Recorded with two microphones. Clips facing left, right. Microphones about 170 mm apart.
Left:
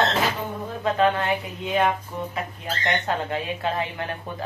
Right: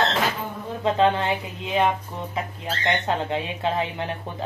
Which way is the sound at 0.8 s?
25° right (ahead or behind).